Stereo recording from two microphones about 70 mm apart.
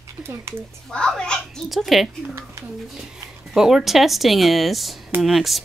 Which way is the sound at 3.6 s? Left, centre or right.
Centre.